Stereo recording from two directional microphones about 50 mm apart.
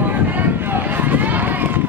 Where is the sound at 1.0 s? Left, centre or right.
Right.